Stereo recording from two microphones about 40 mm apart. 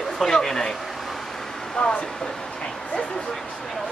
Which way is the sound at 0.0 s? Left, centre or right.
Centre.